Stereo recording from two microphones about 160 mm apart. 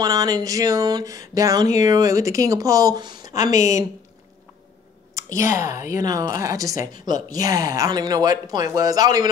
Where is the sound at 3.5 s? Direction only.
50° left (ahead or behind).